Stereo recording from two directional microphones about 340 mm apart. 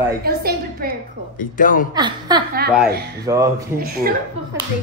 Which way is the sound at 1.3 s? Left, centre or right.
Left.